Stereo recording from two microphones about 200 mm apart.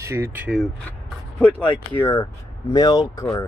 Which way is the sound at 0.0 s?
15° right (ahead or behind).